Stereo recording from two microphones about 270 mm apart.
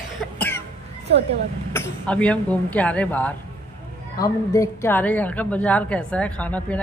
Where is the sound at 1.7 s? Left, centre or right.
Centre.